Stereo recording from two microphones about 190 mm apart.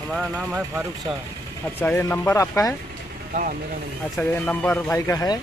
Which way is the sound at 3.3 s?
45° right (ahead or behind).